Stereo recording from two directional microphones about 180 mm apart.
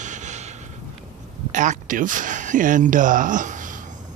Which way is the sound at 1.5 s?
45° right (ahead or behind).